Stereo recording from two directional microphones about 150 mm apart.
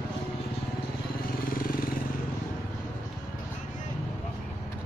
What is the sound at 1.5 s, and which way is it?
Vehicle, 70° left (ahead or behind).